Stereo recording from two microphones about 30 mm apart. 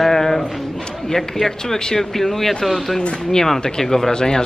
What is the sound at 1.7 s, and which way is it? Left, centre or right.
Speech, left.